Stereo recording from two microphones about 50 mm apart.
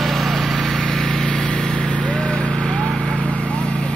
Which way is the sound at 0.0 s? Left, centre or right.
Centre.